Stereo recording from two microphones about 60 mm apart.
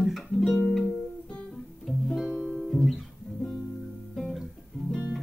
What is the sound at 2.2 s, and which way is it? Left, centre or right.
Music, centre.